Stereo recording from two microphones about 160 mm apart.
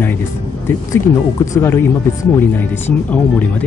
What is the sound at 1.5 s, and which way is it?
Speech, 15° left (ahead or behind).